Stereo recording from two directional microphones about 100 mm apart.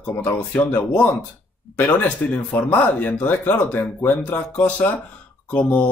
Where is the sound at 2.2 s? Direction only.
20° left (ahead or behind).